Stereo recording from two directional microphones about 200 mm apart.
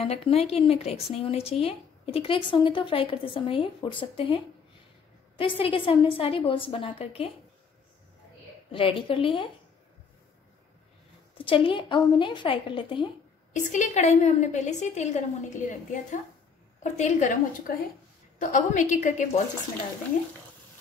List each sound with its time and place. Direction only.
0.0 s a woman's voice: 30° left (ahead or behind)
5.4 s a woman's voice: 25° left (ahead or behind)
8.7 s a woman's voice: 25° left (ahead or behind)
11.3 s a woman's voice: 25° left (ahead or behind)
13.5 s a woman's voice: 35° left (ahead or behind)